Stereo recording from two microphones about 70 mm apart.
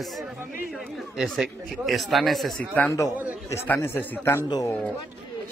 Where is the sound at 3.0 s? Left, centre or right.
Left.